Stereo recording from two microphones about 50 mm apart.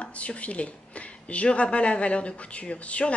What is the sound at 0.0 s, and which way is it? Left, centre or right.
A woman's voice, left.